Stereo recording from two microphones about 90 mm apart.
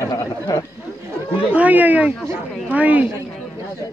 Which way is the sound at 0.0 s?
40° left (ahead or behind).